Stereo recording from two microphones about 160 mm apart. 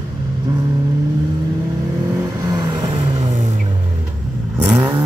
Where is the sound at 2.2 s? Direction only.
25° right (ahead or behind).